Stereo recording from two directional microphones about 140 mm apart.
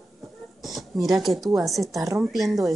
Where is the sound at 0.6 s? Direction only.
Centre (ahead or behind).